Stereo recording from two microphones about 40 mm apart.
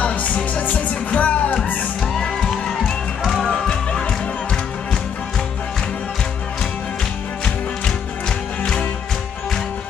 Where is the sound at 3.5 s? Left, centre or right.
Centre.